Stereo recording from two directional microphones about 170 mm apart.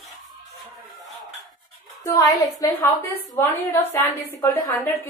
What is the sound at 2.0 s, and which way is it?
A woman's voice, 20° left (ahead or behind).